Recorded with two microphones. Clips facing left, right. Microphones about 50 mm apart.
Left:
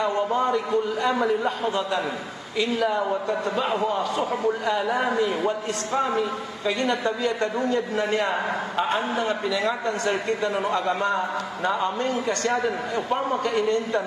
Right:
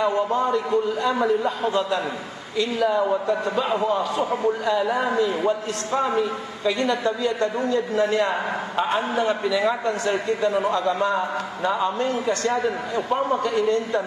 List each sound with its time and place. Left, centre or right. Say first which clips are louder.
0.0 s a man's voice: right 2 dB; centre
8.2 s a man's voice: right 1 dB; centre
10.5 s speech: right 2 dB; left
11.0 s a man's voice: right 2 dB; centre